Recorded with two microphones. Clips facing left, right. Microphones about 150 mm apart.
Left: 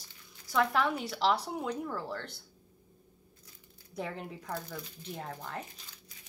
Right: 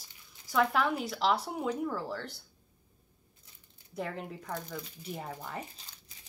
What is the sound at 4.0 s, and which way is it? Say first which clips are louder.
Speech: right 1 dB; centre (ahead or behind).